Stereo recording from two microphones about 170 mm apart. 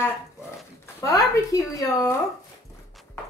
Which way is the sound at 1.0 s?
20° left (ahead or behind).